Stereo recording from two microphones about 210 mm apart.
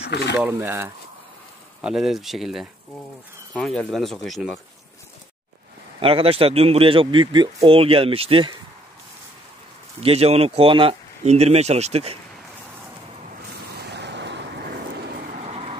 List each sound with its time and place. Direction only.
0.1 s speech: 55° left (ahead or behind)
0.4 s speech: 10° right (ahead or behind)
5.9 s speech: 25° right (ahead or behind)
9.9 s speech: 30° right (ahead or behind)
13.7 s vehicle: 50° right (ahead or behind); by 15.8 s 30° right (ahead or behind)